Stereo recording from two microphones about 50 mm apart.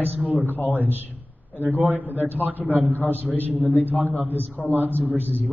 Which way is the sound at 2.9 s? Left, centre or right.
Left.